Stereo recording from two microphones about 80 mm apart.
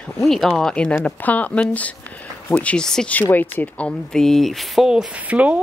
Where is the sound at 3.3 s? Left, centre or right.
Left.